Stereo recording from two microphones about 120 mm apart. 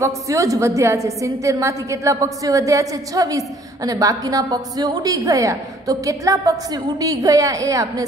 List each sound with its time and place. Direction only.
0.0 s a woman's voice: 25° right (ahead or behind)